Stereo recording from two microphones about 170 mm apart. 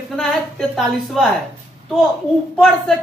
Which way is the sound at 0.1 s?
Centre (ahead or behind).